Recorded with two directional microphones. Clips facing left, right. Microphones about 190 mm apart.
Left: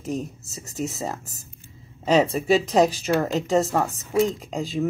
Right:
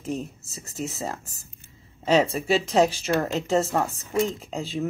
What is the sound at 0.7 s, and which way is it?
Speech, 40° left (ahead or behind).